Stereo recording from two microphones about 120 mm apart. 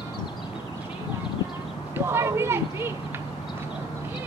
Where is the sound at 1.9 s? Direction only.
20° right (ahead or behind).